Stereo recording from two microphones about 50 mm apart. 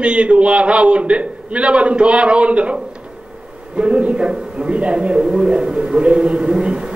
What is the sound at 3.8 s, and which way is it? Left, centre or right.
A man's voice, right.